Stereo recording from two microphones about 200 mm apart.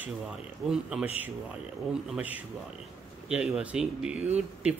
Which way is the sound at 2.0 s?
5° right (ahead or behind).